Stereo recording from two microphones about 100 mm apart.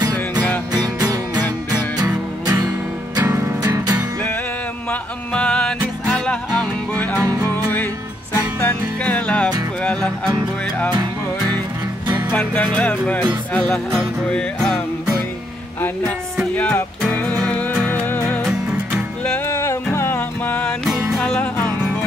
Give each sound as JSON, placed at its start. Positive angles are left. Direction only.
{"t": 0.7, "sound": "music", "side_deg": -40}
{"t": 3.2, "sound": "music", "side_deg": -35}
{"t": 5.3, "sound": "music", "side_deg": 15}
{"t": 7.2, "sound": "music", "side_deg": -35}
{"t": 7.5, "sound": "music", "side_deg": 20}
{"t": 10.9, "sound": "music", "side_deg": -45}
{"t": 12.3, "sound": "music", "side_deg": 15}
{"t": 16.5, "sound": "music", "side_deg": 15}
{"t": 18.7, "sound": "music", "side_deg": -10}
{"t": 19.2, "sound": "music", "side_deg": 20}